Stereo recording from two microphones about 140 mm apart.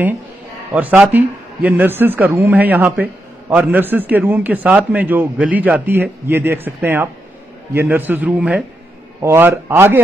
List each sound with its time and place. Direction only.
0.7 s a man's voice: 10° right (ahead or behind)